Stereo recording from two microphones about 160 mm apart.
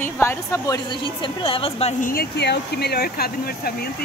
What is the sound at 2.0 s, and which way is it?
Speech, 65° left (ahead or behind).